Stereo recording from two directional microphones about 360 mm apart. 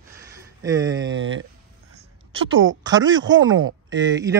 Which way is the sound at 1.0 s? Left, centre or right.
Right.